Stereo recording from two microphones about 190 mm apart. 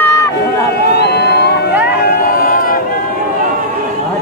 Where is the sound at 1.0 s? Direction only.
60° left (ahead or behind).